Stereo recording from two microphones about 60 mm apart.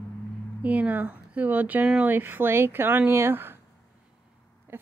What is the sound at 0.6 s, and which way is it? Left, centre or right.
A woman's voice, right.